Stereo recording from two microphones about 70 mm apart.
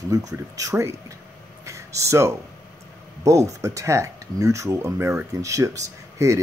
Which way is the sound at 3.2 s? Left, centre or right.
Right.